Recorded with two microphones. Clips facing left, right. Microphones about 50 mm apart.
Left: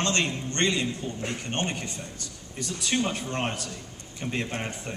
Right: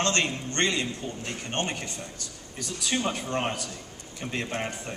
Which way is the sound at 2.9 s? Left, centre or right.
Centre.